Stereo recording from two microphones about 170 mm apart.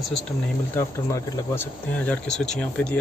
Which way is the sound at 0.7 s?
15° left (ahead or behind).